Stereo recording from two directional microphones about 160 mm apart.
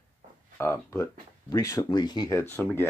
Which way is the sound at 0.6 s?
15° left (ahead or behind).